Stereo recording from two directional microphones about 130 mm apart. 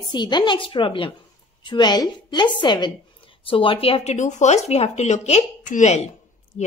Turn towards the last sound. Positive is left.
turn(degrees=60)  # may be behind; listen again after turning